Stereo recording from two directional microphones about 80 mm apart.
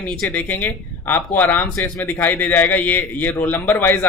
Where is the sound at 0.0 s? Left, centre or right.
Centre.